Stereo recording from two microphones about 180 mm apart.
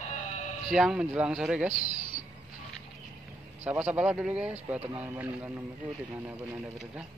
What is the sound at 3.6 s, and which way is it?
Speech, 10° right (ahead or behind).